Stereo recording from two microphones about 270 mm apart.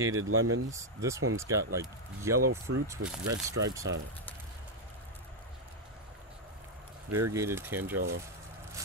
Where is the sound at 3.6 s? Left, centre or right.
Centre.